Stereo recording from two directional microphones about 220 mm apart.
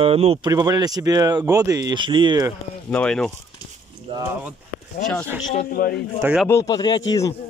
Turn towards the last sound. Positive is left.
turn(degrees=15)  # may be behind; listen again after turning